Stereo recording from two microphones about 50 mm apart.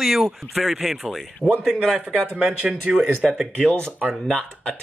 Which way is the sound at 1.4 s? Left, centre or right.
Right.